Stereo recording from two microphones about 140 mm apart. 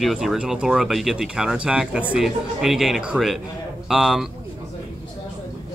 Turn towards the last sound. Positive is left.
turn(degrees=-5)  # may be behind; listen again after turning